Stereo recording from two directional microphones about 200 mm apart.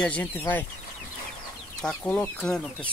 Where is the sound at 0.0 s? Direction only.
10° left (ahead or behind).